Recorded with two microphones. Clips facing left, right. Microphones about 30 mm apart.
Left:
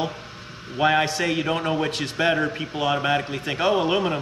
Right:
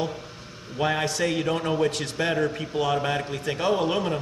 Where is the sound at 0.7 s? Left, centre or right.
Left.